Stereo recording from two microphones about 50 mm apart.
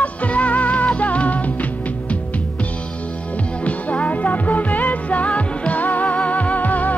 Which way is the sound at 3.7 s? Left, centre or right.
Left.